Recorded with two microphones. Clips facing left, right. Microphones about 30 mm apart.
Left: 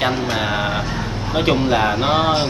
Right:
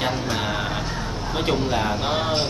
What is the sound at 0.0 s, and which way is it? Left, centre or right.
Speech, left.